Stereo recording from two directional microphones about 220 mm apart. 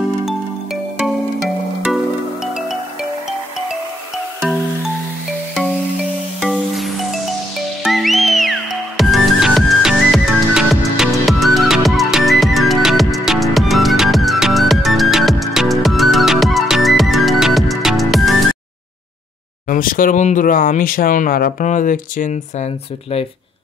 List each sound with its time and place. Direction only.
1.0 s music: centre (ahead or behind)
6.4 s music: centre (ahead or behind)
19.7 s speech: 40° left (ahead or behind)